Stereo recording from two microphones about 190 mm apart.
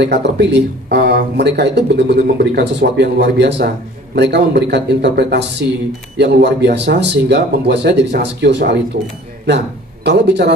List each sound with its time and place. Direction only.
0.0 s speech: 65° right (ahead or behind)
10.0 s speech: 65° right (ahead or behind)